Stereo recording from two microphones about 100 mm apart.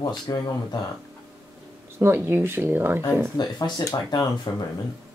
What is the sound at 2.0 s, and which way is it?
Speech, 20° right (ahead or behind).